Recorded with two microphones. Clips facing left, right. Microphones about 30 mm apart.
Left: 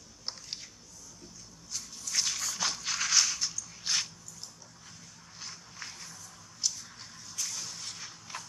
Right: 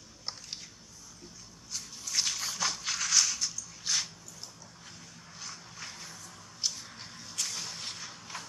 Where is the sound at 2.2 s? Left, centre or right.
Centre.